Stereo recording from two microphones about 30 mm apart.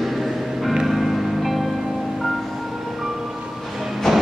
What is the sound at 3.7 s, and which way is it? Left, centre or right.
Train, centre.